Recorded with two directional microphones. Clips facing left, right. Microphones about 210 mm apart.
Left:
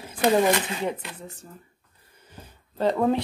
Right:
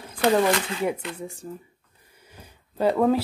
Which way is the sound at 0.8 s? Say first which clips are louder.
Right 3 dB; 10° right (ahead or behind).